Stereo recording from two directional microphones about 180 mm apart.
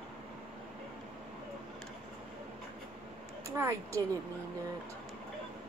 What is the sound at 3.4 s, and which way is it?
Speech, 15° right (ahead or behind).